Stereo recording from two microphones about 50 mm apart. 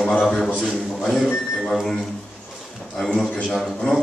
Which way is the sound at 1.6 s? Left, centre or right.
Centre.